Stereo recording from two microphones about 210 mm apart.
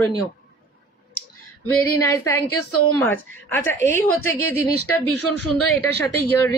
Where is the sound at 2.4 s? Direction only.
90° left.